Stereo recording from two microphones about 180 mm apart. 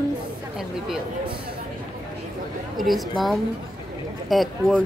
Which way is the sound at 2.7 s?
Centre (ahead or behind).